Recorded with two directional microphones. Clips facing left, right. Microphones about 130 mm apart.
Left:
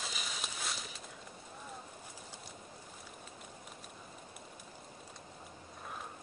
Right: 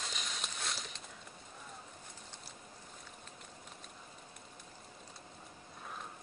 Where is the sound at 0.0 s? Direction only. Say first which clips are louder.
Left 1 dB; 5° left (ahead or behind).